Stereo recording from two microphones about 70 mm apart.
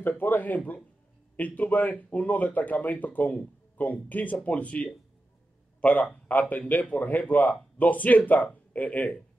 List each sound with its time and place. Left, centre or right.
0.2 s a man's voice: left